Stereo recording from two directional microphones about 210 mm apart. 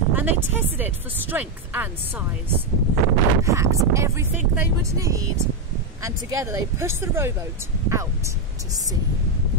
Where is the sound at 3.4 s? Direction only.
15° right (ahead or behind).